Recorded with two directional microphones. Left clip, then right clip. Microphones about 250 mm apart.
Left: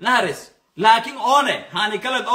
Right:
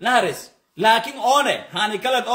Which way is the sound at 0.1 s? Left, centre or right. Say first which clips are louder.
Left 1 dB; centre.